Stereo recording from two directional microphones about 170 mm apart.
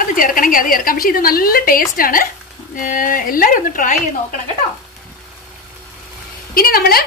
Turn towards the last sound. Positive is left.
turn(degrees=60)  # may be behind; listen again after turning